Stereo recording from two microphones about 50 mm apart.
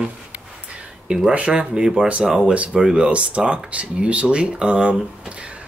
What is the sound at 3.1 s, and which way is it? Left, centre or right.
Speech, right.